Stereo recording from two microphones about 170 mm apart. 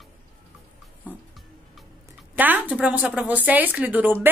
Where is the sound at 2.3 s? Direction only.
10° right (ahead or behind).